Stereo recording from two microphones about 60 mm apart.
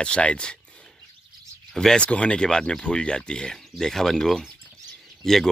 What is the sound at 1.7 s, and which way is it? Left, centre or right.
Speech, centre.